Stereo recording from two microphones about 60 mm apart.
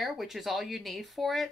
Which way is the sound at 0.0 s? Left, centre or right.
Centre.